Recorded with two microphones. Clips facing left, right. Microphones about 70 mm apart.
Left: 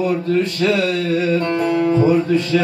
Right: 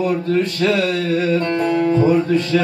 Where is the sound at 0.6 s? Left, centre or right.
Centre.